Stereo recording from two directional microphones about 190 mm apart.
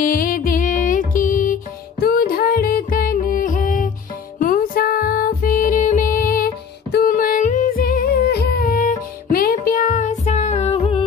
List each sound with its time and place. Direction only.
0.0 s music: 50° left (ahead or behind); by 11.1 s 30° left (ahead or behind)